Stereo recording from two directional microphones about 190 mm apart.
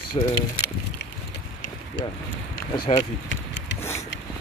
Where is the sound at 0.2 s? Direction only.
25° left (ahead or behind).